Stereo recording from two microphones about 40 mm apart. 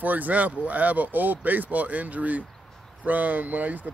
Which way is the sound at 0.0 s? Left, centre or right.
Right.